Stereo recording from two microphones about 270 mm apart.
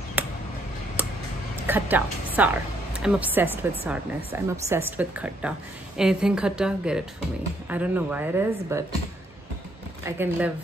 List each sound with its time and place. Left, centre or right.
0.2 s a sound: centre
1.7 s a woman's voice: centre
10.0 s a woman's voice: centre